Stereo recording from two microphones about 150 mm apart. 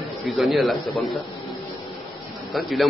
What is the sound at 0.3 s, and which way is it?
Speech, centre (ahead or behind).